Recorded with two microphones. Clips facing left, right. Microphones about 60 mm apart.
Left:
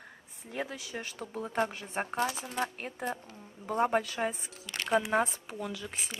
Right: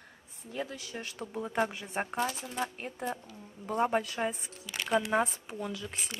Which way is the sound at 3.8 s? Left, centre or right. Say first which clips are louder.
Left 1 dB; centre.